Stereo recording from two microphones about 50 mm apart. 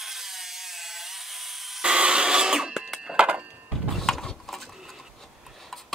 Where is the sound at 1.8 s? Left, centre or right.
Centre.